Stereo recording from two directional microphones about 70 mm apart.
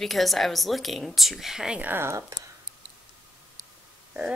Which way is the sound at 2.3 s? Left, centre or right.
Right.